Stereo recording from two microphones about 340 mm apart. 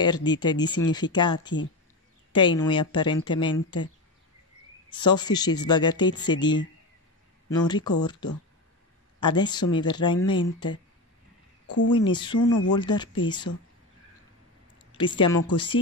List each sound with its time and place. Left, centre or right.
0.0 s speech: centre
11.6 s a sound: left
11.9 s speech: centre
12.4 s speech: left
12.7 s speech: centre
15.1 s speech: centre